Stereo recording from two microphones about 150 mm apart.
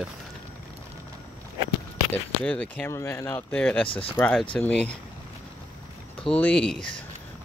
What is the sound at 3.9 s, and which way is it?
Speech, 35° left (ahead or behind).